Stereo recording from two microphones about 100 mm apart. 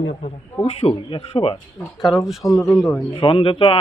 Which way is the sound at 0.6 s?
75° left (ahead or behind).